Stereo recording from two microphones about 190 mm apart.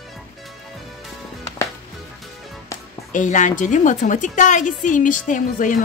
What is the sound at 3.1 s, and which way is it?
A woman's voice, 40° left (ahead or behind).